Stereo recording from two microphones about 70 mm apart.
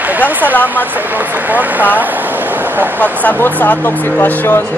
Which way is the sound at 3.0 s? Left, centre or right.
Left.